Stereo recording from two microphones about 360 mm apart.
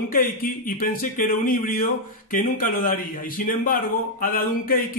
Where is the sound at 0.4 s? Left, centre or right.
Left.